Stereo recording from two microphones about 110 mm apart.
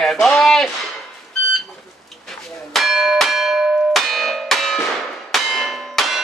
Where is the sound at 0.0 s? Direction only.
5° left (ahead or behind).